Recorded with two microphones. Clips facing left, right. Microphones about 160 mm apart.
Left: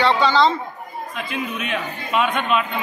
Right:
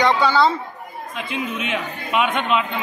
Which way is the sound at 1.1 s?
20° right (ahead or behind).